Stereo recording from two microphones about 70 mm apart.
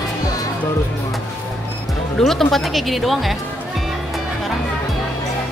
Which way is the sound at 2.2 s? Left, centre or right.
Centre.